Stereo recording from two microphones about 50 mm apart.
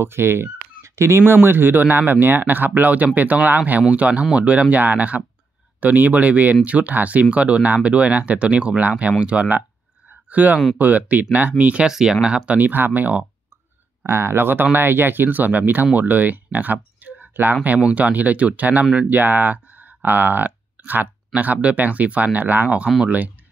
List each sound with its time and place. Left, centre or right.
0.0 s speech: right
0.8 s a sound: right
1.2 s speech: right
4.1 s speech: centre
4.4 s speech: right
11.8 s speech: centre
12.4 s speech: right
14.0 s speech: right
17.7 s speech: right